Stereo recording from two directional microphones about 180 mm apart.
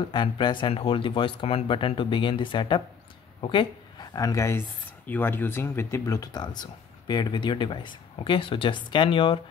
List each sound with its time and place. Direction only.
0.1 s speech: 25° left (ahead or behind)